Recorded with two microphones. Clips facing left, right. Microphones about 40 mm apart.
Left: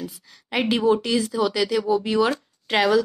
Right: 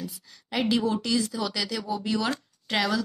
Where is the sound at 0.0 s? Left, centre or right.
Left.